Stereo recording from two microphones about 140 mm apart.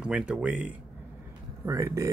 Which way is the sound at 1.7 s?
20° right (ahead or behind).